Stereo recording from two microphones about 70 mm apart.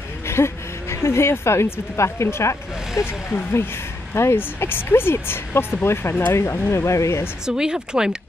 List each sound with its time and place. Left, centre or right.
0.3 s a woman's voice: left
4.1 s a woman's voice: left
7.4 s speech: centre